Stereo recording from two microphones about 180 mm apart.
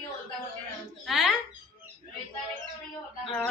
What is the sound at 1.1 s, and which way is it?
Speech, centre (ahead or behind).